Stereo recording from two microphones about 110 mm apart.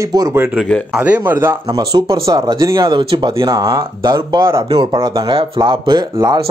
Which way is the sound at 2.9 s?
45° right (ahead or behind).